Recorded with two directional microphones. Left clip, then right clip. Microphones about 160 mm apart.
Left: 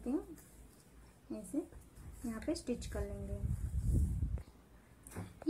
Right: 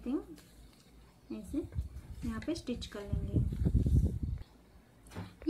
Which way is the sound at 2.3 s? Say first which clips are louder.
Right 1 dB; 20° right (ahead or behind).